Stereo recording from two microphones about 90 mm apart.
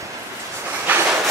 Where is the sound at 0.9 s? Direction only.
20° right (ahead or behind).